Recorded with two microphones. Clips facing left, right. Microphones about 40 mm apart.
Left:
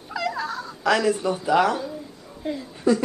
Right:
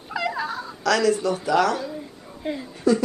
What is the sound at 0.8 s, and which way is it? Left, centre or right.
Speech, centre.